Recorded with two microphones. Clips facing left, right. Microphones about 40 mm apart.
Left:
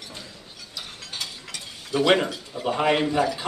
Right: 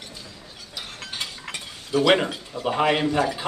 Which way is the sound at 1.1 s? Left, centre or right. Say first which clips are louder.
Right 2 dB; right.